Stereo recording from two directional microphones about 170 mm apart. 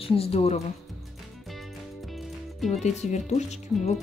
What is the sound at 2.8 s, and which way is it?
Speech, 45° left (ahead or behind).